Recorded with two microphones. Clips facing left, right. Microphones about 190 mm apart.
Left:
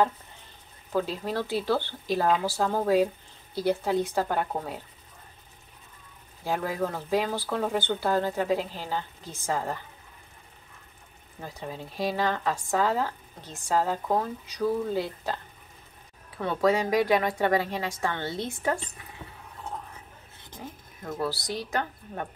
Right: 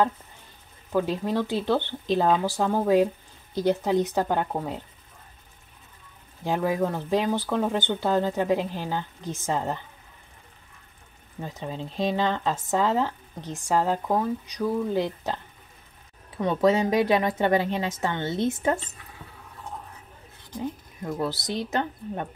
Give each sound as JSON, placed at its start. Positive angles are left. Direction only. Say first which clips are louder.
{"t": 0.9, "sound": "speech", "louder": "right 4 dB", "side_deg": -15}
{"t": 6.4, "sound": "speech", "louder": "right 4 dB", "side_deg": -20}
{"t": 11.4, "sound": "speech", "louder": "right 3 dB", "side_deg": -20}
{"t": 21.0, "sound": "speech", "louder": "right 2 dB", "side_deg": -20}